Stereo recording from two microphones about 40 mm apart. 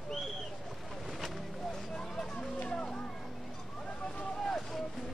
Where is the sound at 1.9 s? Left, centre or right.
Centre.